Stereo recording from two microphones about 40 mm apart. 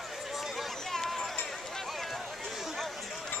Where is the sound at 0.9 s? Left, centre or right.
Centre.